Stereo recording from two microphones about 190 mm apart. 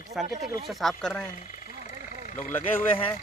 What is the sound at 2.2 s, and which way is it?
Vehicle, 45° left (ahead or behind).